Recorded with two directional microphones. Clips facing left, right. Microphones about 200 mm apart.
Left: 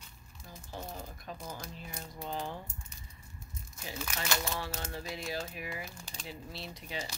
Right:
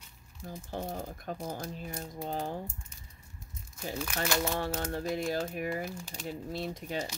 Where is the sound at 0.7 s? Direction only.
55° right (ahead or behind).